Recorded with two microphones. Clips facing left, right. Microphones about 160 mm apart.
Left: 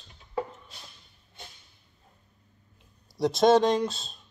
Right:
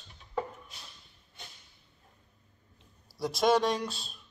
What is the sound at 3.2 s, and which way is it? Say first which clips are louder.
Speech: left 6 dB; 25° left (ahead or behind).